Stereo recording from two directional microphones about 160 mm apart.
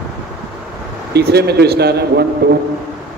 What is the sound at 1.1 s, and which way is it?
A man's voice, 90° right.